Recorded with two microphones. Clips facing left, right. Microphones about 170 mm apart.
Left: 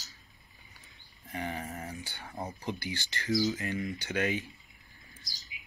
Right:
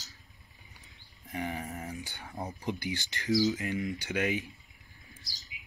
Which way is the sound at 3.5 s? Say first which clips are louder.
Right 1 dB; 15° right (ahead or behind).